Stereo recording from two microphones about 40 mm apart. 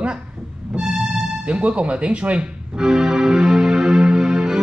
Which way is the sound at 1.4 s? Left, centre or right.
Right.